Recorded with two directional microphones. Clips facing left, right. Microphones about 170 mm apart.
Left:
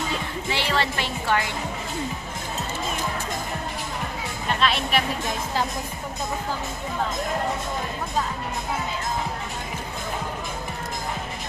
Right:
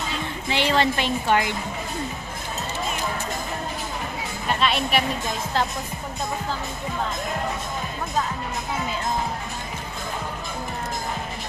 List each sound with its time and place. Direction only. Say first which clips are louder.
0.5 s music: right 4 dB; 20° right (ahead or behind)
4.6 s speech: right 1 dB; centre (ahead or behind)